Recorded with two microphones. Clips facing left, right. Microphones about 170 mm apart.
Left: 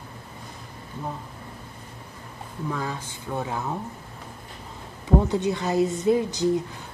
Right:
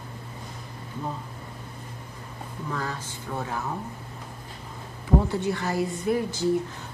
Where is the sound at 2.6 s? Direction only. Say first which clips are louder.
Left 2 dB; 15° left (ahead or behind).